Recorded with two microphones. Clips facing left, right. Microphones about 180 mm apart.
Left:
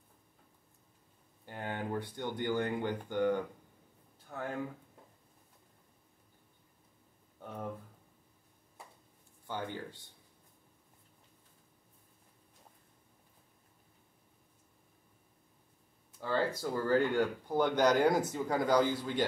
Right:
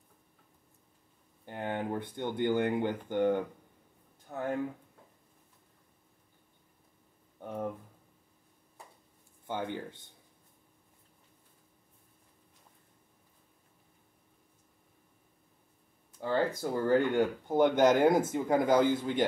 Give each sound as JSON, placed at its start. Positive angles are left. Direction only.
{"t": 1.4, "sound": "speech", "side_deg": -20}
{"t": 7.3, "sound": "a sound", "side_deg": -15}
{"t": 9.5, "sound": "speech", "side_deg": -20}
{"t": 16.2, "sound": "speech", "side_deg": -15}